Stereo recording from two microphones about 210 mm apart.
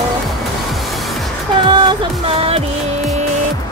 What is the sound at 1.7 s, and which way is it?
Music, 20° right (ahead or behind).